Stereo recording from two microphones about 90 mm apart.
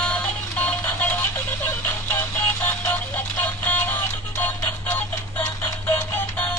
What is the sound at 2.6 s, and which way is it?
Music, 25° left (ahead or behind).